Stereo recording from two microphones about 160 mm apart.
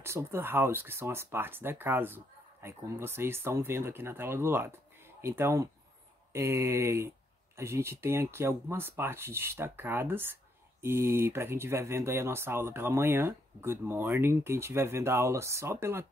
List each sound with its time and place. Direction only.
0.0 s speech: 15° right (ahead or behind)